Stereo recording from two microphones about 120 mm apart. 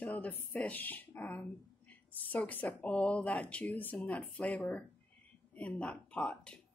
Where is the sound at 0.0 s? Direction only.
10° left (ahead or behind).